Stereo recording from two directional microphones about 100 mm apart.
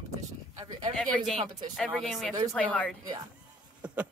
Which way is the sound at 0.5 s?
40° right (ahead or behind).